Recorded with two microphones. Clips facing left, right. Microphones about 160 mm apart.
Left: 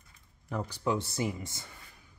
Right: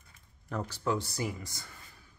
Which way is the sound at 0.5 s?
15° left (ahead or behind).